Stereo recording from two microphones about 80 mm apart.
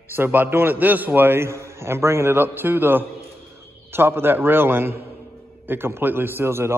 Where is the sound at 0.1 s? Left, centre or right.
Right.